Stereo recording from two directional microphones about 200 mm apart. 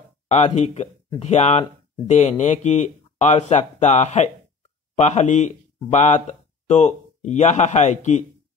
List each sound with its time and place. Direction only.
0.3 s a man's voice: 35° left (ahead or behind)